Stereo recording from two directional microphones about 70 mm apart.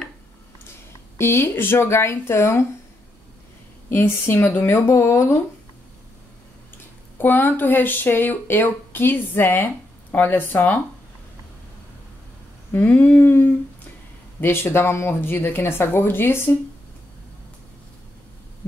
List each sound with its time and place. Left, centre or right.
1.1 s speech: left
3.9 s speech: left
7.2 s speech: left
12.7 s humming: left
14.4 s speech: left